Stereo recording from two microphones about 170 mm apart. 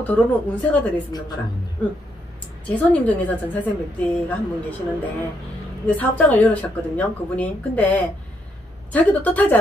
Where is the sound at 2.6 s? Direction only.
10° left (ahead or behind).